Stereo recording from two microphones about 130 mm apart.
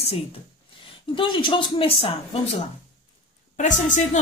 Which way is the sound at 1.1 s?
40° left (ahead or behind).